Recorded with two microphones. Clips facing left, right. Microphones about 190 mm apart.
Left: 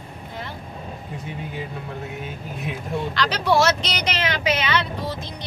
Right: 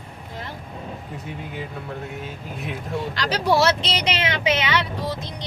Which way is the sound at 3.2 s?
40° right (ahead or behind).